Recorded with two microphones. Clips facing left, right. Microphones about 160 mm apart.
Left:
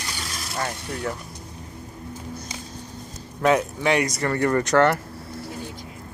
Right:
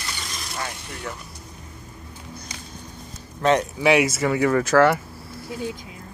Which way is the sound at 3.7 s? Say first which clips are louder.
Right 3 dB; 5° right (ahead or behind).